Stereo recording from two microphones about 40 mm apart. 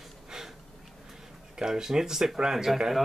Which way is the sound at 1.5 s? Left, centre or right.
Centre.